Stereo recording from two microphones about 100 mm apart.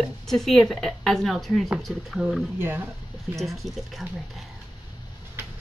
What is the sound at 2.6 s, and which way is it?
Speech, 20° right (ahead or behind).